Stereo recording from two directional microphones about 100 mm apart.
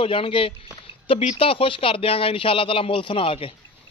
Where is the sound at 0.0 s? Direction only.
60° left (ahead or behind).